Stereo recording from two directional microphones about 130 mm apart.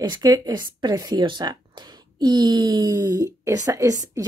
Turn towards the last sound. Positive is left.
turn(degrees=-25)  # may be behind; listen again after turning